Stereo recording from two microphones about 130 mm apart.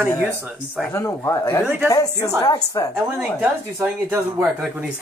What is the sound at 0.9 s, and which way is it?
Speech, 20° left (ahead or behind).